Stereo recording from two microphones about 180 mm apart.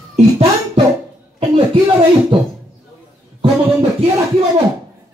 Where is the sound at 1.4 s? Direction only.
30° right (ahead or behind).